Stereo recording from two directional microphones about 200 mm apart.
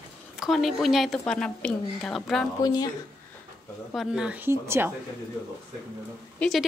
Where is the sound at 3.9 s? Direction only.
Centre (ahead or behind).